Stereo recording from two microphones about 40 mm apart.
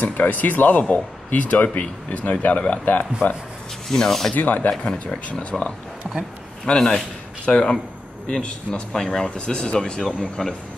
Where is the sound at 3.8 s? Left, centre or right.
Centre.